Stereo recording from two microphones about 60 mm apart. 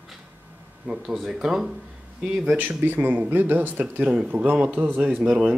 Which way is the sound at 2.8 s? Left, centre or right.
Right.